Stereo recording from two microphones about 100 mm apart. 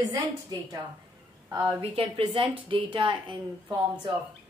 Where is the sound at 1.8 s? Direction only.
70° right (ahead or behind); by 3.7 s 55° right (ahead or behind).